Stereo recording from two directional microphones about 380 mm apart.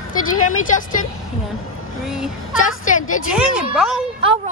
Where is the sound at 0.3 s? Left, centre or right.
Left.